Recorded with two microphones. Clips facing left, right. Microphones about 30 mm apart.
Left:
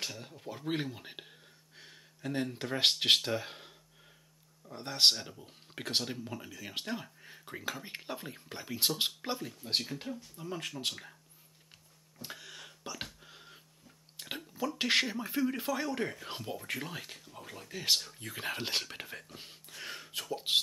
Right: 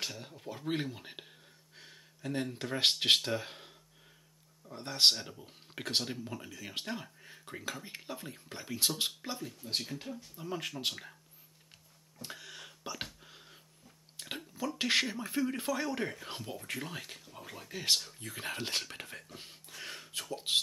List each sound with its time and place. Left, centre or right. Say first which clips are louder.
0.0 s speech: even; centre
7.8 s speech: left 2 dB; centre
9.8 s speech: left 2 dB; centre
10.3 s speech: right 4 dB; centre
12.2 s a sound: even; centre
14.8 s speech: left 1 dB; centre